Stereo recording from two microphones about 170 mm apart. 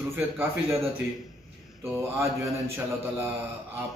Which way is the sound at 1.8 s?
15° right (ahead or behind).